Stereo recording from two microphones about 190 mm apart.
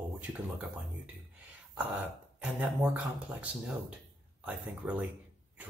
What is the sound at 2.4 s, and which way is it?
Speech, 5° right (ahead or behind).